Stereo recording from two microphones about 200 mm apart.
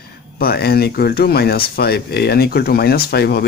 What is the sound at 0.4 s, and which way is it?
Speech, 50° left (ahead or behind).